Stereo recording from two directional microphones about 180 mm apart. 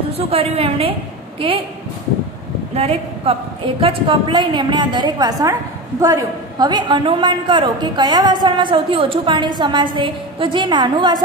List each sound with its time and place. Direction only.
0.2 s a woman's voice: 35° right (ahead or behind)
2.7 s a woman's voice: 35° right (ahead or behind)